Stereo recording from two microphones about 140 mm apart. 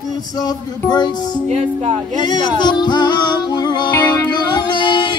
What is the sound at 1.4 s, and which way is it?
Speech, 50° right (ahead or behind).